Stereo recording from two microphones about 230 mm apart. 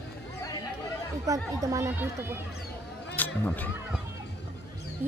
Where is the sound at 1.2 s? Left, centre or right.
Centre.